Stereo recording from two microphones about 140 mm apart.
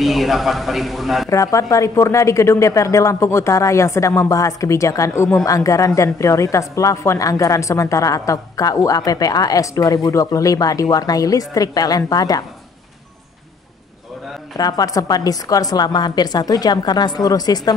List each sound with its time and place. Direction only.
0.0 s a man's voice: centre (ahead or behind)
1.3 s a woman's voice: 25° left (ahead or behind)
14.6 s a woman's voice: 25° left (ahead or behind)